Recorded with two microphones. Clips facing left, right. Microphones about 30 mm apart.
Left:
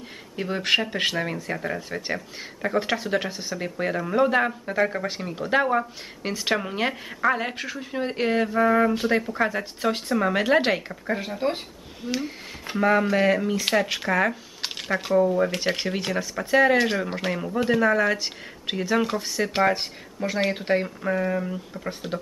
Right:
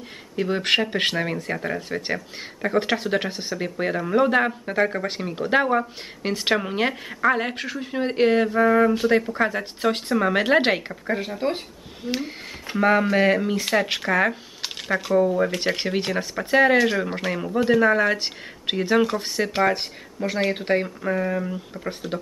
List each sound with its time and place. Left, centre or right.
0.4 s speech: centre
10.9 s speech: centre
12.8 s speech: centre
14.6 s a sound: centre
15.1 s speech: centre